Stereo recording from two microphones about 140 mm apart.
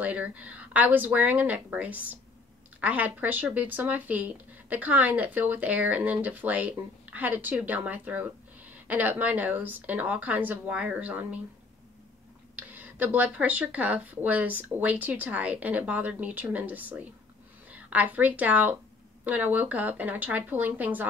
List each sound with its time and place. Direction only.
0.0 s speech: 10° right (ahead or behind)
12.5 s a woman's voice: 10° right (ahead or behind)